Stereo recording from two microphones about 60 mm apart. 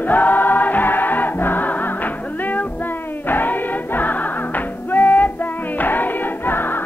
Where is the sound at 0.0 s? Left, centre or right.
Left.